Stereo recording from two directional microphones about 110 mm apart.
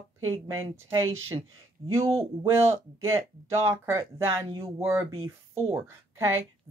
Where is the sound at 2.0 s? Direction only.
60° right (ahead or behind).